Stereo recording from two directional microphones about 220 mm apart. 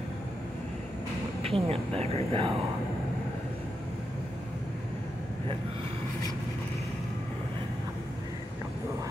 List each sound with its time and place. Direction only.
1.4 s speech: 25° right (ahead or behind)